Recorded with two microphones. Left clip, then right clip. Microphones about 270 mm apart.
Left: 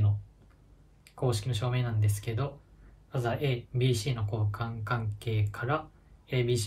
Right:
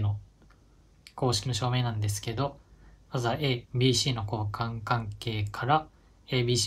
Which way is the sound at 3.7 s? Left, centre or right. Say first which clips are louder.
Right 5 dB; centre.